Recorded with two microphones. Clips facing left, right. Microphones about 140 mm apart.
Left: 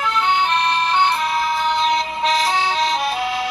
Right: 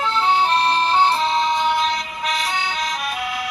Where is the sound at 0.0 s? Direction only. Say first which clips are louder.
Right 1 dB; 30° right (ahead or behind).